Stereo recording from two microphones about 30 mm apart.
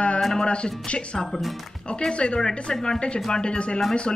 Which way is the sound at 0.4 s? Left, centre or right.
Left.